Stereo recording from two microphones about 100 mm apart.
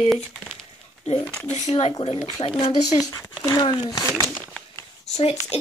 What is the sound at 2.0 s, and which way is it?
Speech, 70° left (ahead or behind).